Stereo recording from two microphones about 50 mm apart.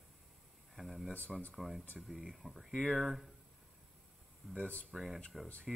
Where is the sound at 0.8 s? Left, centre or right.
Centre.